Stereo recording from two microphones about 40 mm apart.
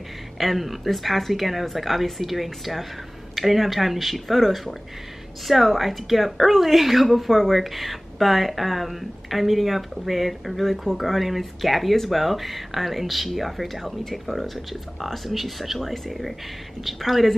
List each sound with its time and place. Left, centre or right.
0.4 s speech: centre